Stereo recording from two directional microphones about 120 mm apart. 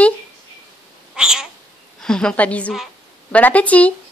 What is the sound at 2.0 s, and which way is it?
A woman's voice, 5° left (ahead or behind).